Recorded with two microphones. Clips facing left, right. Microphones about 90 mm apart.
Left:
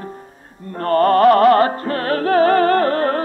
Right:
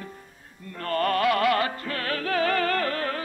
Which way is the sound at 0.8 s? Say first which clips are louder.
Left 11 dB; 40° left (ahead or behind).